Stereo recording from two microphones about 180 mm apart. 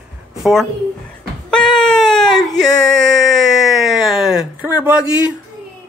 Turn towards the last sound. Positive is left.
turn(degrees=-5)  # may be behind; listen again after turning